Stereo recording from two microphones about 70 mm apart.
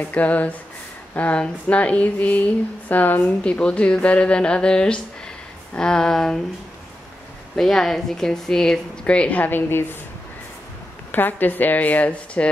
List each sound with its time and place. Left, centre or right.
0.0 s a woman's voice: left
7.5 s a woman's voice: centre; by 9.8 s left
11.1 s speech: left